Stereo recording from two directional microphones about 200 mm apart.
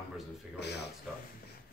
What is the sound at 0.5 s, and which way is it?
Speech, 55° left (ahead or behind).